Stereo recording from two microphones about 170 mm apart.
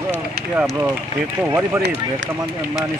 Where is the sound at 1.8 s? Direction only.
90° right.